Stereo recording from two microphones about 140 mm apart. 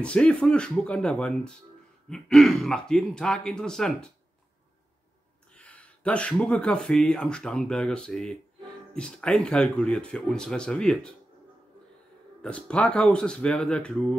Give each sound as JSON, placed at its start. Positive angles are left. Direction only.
{"t": 0.0, "sound": "speech", "side_deg": 5}
{"t": 5.5, "sound": "speech", "side_deg": 10}
{"t": 12.4, "sound": "speech", "side_deg": 10}